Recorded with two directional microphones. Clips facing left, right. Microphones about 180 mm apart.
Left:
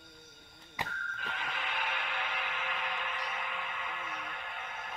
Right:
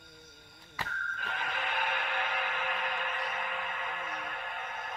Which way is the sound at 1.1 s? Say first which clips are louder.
Right 3 dB; 50° right (ahead or behind).